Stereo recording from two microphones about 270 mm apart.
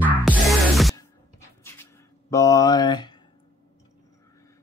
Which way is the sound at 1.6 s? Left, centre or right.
Centre.